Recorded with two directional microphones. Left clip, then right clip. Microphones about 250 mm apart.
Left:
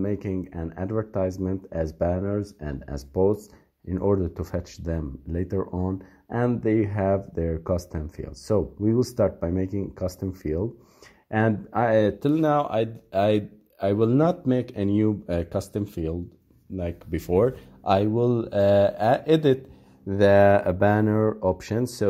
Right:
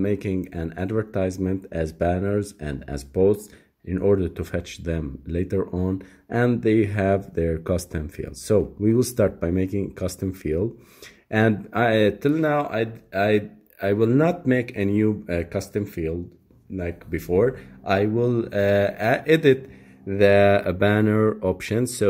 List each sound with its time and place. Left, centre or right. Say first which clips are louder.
0.0 s speech: right 4 dB; centre
12.2 s speech: even; centre